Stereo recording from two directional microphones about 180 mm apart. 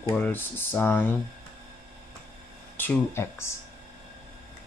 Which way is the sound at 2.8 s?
15° left (ahead or behind).